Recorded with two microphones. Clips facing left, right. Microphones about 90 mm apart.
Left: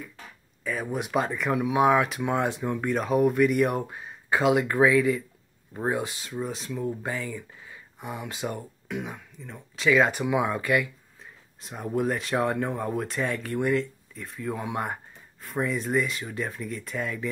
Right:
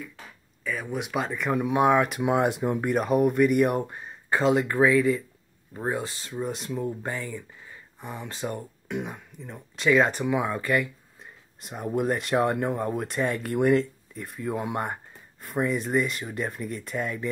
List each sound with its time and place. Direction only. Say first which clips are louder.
0.7 s speech: left 1 dB; 5° left (ahead or behind)
2.2 s speech: right 3 dB; 15° right (ahead or behind); by 6.1 s 15° left (ahead or behind)
6.2 s speech: right 1 dB; centre (ahead or behind)
8.0 s speech: left 1 dB; 10° left (ahead or behind)
11.6 s speech: right 1 dB; 5° right (ahead or behind)
13.5 s speech: right 5 dB; 20° right (ahead or behind)
14.1 s speech: right 2 dB; 10° right (ahead or behind)